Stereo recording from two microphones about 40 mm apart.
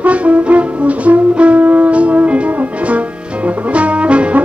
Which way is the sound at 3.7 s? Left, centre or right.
Right.